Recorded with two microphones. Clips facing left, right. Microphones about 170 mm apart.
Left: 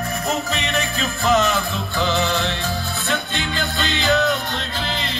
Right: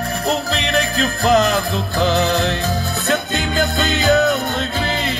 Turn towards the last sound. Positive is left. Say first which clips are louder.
# right 4 dB
turn(degrees=-45)  # may be behind; listen again after turning